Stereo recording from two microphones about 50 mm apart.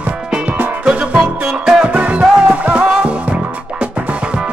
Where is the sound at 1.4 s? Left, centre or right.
Centre.